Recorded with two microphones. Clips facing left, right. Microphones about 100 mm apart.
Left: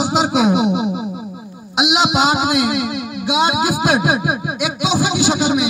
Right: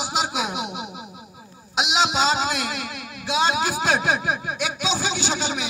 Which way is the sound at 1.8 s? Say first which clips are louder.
Left 6 dB; 15° left (ahead or behind).